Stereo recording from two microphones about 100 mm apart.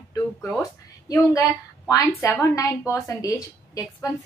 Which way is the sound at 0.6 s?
35° left (ahead or behind).